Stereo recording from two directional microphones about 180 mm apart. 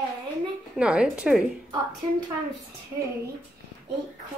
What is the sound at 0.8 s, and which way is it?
Speech, 5° right (ahead or behind).